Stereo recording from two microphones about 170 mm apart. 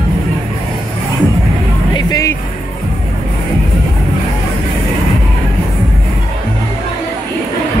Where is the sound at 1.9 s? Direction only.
20° left (ahead or behind).